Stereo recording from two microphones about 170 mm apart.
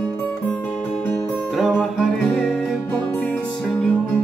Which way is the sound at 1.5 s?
Centre (ahead or behind).